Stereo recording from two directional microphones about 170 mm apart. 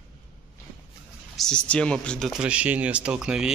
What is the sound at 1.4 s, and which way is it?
Speech, 5° left (ahead or behind).